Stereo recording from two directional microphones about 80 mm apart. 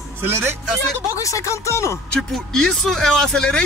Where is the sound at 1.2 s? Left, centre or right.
Left.